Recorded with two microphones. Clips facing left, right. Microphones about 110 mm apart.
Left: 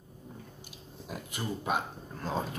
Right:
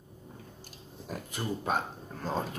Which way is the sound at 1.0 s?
5° left (ahead or behind).